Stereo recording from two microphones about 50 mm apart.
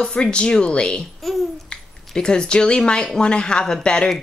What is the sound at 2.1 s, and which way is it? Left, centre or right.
Speech, centre.